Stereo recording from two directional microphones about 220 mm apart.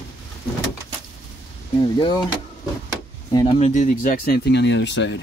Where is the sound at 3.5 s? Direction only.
35° left (ahead or behind); by 5.1 s 55° left (ahead or behind).